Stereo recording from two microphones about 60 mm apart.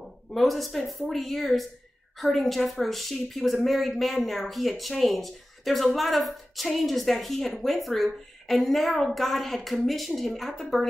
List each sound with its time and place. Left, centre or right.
0.3 s a woman's voice: centre